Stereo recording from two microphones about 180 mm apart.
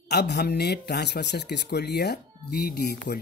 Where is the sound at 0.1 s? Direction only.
65° left (ahead or behind).